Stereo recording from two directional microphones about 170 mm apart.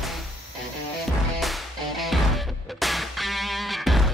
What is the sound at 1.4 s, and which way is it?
Music, centre (ahead or behind).